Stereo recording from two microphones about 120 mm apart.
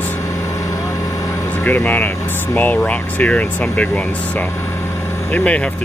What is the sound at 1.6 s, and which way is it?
Speech, 15° left (ahead or behind).